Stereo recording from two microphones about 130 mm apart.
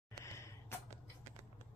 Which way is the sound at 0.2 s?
20° left (ahead or behind).